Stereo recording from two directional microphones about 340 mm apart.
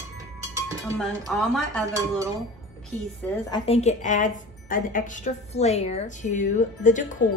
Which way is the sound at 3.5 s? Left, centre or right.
Centre.